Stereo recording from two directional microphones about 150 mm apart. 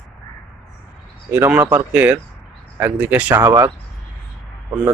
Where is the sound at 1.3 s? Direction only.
15° right (ahead or behind).